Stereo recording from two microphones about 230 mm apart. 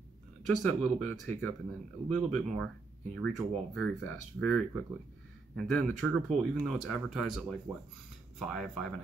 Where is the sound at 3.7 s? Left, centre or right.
Centre.